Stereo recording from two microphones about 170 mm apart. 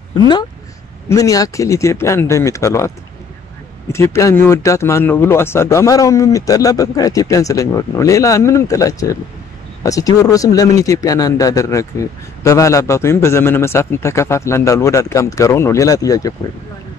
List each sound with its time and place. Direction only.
0.1 s speech: 25° left (ahead or behind)
3.9 s speech: 15° left (ahead or behind)